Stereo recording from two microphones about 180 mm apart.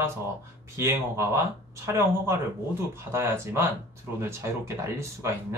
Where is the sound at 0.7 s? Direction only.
15° right (ahead or behind).